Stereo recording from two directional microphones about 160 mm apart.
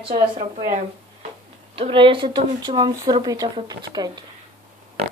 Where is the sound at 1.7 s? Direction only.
35° right (ahead or behind).